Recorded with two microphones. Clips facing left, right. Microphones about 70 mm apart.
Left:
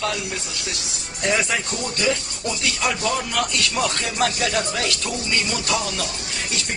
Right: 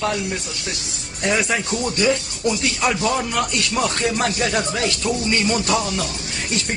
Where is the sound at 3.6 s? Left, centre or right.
Right.